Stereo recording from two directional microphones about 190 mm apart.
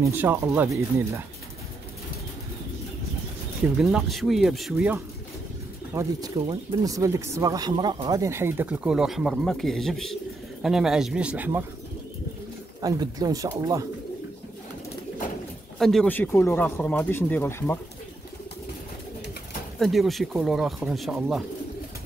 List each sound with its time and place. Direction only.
0.0 s speech: 10° right (ahead or behind)
3.6 s speech: 5° right (ahead or behind)
5.9 s speech: 20° right (ahead or behind)
12.8 s speech: 20° right (ahead or behind)
15.8 s speech: centre (ahead or behind)
19.8 s speech: centre (ahead or behind)